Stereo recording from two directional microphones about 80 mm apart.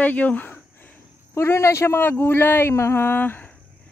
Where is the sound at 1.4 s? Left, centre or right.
Left.